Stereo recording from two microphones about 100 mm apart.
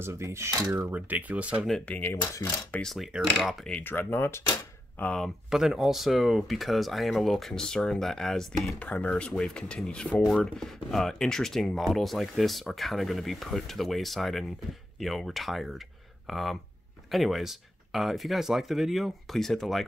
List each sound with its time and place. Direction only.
0.0 s cutlery: 25° right (ahead or behind)
1.9 s speech: 20° left (ahead or behind)
2.9 s speech: centre (ahead or behind)
3.7 s speech: 20° left (ahead or behind)
5.2 s speech: 5° right (ahead or behind)
8.7 s speech: 15° left (ahead or behind)